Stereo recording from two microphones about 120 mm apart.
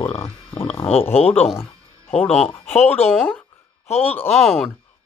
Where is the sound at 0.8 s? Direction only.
55° left (ahead or behind).